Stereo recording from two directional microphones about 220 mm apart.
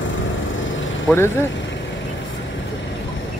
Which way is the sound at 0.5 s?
60° left (ahead or behind).